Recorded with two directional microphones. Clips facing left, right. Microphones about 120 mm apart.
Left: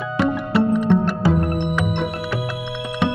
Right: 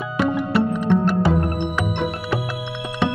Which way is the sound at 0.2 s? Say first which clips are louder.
Left 1 dB; centre (ahead or behind).